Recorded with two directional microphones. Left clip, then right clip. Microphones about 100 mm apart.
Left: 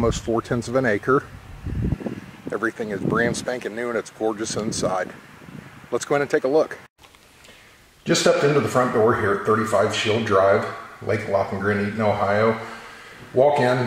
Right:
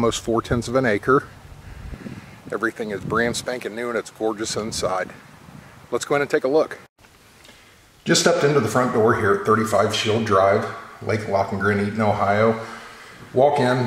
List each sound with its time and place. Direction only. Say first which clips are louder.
0.0 s speech: right 1 dB; 20° right (ahead or behind)
2.5 s speech: right 1 dB; 15° right (ahead or behind)
8.2 s speech: even; 20° right (ahead or behind)
11.3 s speech: right 2 dB; 20° right (ahead or behind)